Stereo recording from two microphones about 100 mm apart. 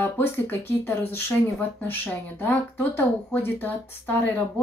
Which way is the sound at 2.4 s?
20° left (ahead or behind).